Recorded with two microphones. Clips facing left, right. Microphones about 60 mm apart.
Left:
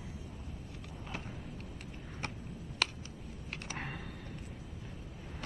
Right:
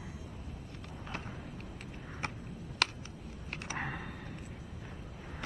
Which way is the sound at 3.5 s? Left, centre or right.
Centre.